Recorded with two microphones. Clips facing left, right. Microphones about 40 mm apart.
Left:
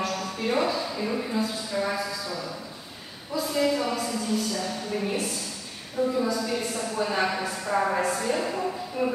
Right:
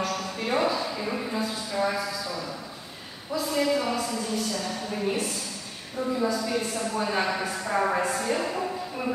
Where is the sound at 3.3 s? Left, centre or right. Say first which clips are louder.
Even; centre.